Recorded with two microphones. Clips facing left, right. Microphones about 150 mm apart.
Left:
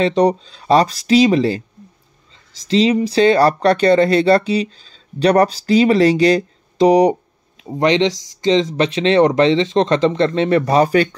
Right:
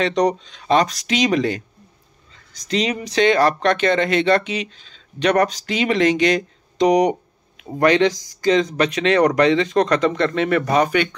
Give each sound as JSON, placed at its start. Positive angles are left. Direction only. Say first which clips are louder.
{"t": 0.0, "sound": "speech", "louder": "left 4 dB", "side_deg": 30}
{"t": 7.6, "sound": "speech", "louder": "left 1 dB", "side_deg": 20}